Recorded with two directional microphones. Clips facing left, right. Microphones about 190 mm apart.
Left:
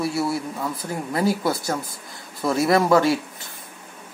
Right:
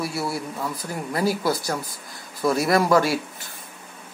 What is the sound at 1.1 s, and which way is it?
Speech, 20° left (ahead or behind).